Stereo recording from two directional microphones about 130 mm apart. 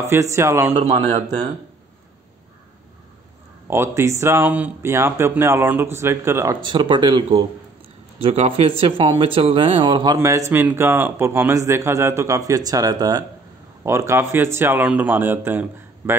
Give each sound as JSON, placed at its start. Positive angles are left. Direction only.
{"t": 0.0, "sound": "speech", "side_deg": -20}
{"t": 0.7, "sound": "a man's voice", "side_deg": -55}
{"t": 3.6, "sound": "speech", "side_deg": -20}
{"t": 6.5, "sound": "speech", "side_deg": -35}
{"t": 10.1, "sound": "speech", "side_deg": -20}